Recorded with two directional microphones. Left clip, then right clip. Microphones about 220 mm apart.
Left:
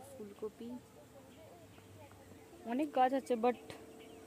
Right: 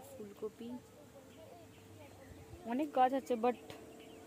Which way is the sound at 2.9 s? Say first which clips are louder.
Even; 15° left (ahead or behind).